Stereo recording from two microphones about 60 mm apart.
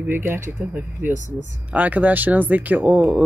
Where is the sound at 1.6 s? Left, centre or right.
Right.